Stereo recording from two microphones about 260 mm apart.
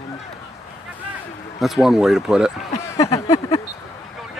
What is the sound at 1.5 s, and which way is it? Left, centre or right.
Speech, centre.